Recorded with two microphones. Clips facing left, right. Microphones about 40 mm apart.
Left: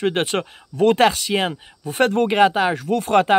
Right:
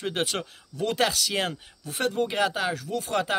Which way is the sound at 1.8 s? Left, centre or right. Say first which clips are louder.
Left 9 dB; left.